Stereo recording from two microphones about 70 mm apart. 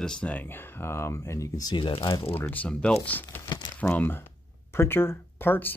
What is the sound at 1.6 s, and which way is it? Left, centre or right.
Speech, left.